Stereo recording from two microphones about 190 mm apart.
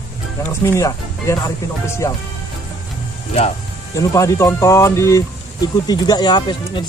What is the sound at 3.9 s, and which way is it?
Speech, 15° left (ahead or behind).